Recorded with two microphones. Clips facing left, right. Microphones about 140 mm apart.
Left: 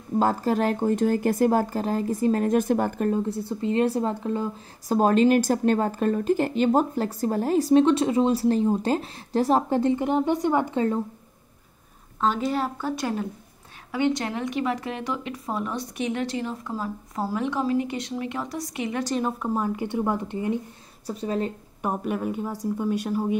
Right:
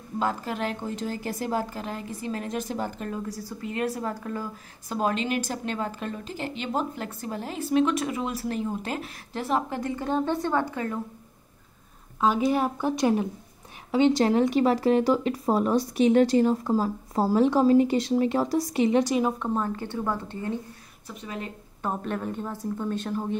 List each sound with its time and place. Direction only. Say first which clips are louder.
0.2 s speech: left 6 dB; 40° left (ahead or behind); by 3.1 s 55° left (ahead or behind)
3.1 s speech: left 8 dB; 25° left (ahead or behind)
4.8 s a woman's voice: left 8 dB; 40° left (ahead or behind)
9.9 s speech: left 3 dB; 15° left (ahead or behind)
12.2 s a woman's voice: right 2 dB; 10° right (ahead or behind); by 19.0 s 25° right (ahead or behind)
19.0 s a woman's voice: right 2 dB; 5° right (ahead or behind)
19.4 s speech: left 2 dB; 10° left (ahead or behind)
21.1 s a woman's voice: left 9 dB; 35° left (ahead or behind)
21.8 s speech: left 3 dB; 10° left (ahead or behind)